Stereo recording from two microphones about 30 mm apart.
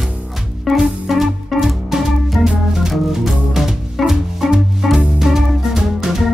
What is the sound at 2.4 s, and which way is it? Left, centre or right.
Organ, centre.